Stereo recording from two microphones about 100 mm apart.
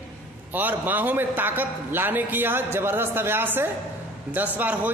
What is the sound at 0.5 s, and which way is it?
A man's voice, 20° right (ahead or behind).